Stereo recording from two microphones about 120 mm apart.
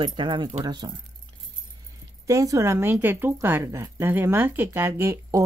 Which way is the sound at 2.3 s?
25° right (ahead or behind).